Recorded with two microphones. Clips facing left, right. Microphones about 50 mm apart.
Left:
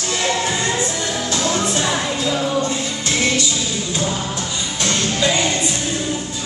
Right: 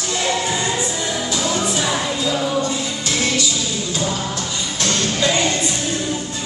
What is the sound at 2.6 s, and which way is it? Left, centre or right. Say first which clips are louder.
Music: left 1 dB; left.